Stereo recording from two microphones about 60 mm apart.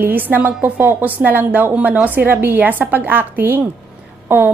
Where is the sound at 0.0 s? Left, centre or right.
Right.